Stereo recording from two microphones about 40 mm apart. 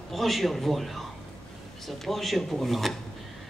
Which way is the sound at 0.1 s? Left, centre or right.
Centre.